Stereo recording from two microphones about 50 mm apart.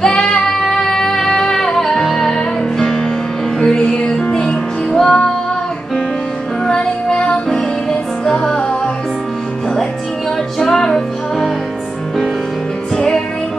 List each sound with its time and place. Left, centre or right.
0.0 s music: centre
6.7 s music: centre
10.6 s music: centre
12.9 s music: centre